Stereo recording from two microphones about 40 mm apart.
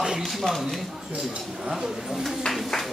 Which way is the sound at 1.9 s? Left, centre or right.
Centre.